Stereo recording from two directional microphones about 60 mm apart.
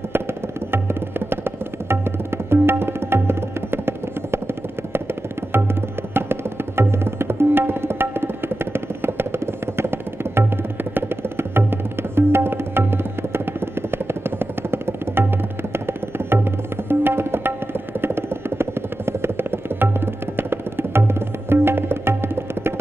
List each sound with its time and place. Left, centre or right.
0.7 s tabla: right
6.1 s tabla: right
15.7 s music: right
17.0 s tabla: right
18.0 s music: right
20.3 s tabla: right